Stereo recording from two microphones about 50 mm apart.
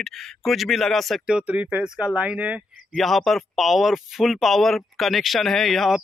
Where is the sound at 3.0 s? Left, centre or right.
Centre.